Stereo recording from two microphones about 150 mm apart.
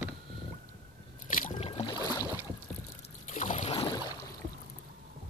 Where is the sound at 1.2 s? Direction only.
60° left (ahead or behind).